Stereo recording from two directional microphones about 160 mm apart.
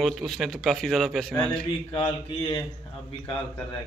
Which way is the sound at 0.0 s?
Centre (ahead or behind).